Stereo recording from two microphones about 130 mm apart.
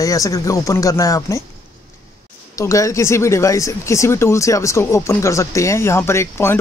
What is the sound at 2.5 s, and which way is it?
Speech, 25° left (ahead or behind).